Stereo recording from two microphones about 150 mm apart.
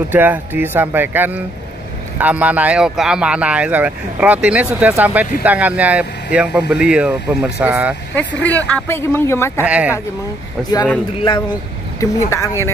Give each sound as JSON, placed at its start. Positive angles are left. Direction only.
{"t": 0.1, "sound": "speech", "side_deg": -10}
{"t": 8.2, "sound": "speech", "side_deg": 10}
{"t": 9.6, "sound": "speech", "side_deg": -10}
{"t": 12.0, "sound": "a woman's voice", "side_deg": 20}